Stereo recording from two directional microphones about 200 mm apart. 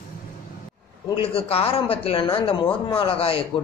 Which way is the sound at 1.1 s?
30° left (ahead or behind).